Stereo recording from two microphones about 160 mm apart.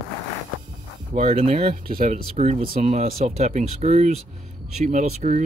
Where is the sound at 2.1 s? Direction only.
45° right (ahead or behind).